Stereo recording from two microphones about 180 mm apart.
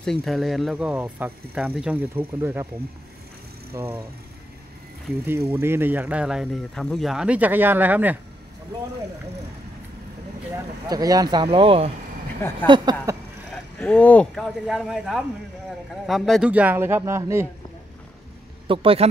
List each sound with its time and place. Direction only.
0.0 s speech: centre (ahead or behind)
3.7 s speech: 15° right (ahead or behind)
5.2 s speech: 15° right (ahead or behind)
10.9 s speech: 20° right (ahead or behind)
13.7 s speech: 5° left (ahead or behind); by 17.5 s 15° right (ahead or behind)
18.7 s speech: 30° right (ahead or behind)